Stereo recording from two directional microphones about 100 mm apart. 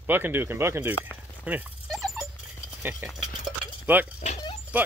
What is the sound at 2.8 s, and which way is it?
Speech, 20° right (ahead or behind).